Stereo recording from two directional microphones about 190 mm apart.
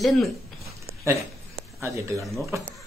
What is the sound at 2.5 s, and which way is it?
Speech, 15° right (ahead or behind).